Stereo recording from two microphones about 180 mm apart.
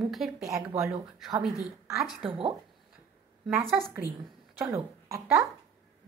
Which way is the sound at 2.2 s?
30° right (ahead or behind).